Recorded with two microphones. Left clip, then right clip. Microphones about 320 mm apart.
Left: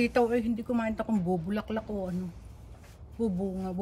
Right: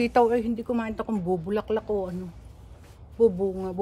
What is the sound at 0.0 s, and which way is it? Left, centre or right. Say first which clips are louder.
Speech: right 5 dB; centre.